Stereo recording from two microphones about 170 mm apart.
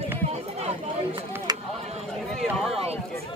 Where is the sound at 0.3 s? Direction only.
40° right (ahead or behind).